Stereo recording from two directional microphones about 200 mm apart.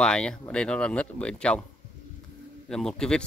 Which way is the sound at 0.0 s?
5° left (ahead or behind).